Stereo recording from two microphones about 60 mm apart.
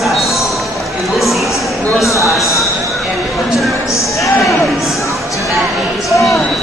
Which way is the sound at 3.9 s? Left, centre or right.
Left.